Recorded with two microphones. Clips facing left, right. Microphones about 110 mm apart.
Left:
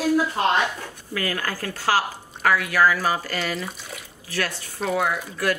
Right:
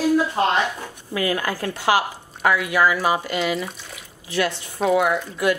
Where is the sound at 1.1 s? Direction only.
20° right (ahead or behind).